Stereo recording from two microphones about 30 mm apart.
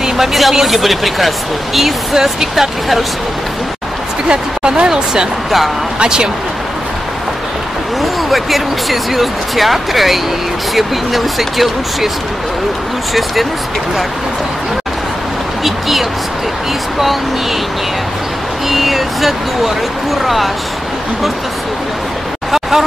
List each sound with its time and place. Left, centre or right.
0.0 s speech: centre
2.1 s speech: centre
4.3 s speech: right
8.0 s speech: centre
15.6 s speech: centre
18.7 s speech: centre
22.5 s a sound: centre